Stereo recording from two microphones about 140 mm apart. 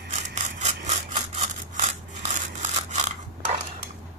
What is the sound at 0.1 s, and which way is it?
Sawing, 55° right (ahead or behind).